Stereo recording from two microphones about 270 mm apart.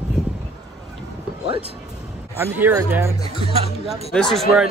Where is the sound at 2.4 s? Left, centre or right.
Centre.